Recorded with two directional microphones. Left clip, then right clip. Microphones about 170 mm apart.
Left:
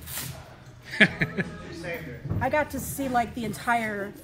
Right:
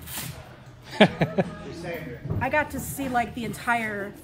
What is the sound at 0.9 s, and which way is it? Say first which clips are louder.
Speech: right 1 dB; 15° right (ahead or behind).